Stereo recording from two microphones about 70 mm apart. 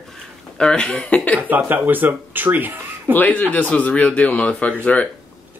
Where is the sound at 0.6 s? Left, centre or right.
Centre.